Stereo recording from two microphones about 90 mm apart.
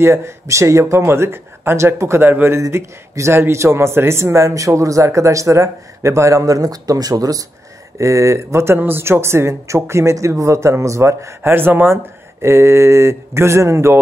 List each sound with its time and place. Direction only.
0.0 s speech: 30° right (ahead or behind)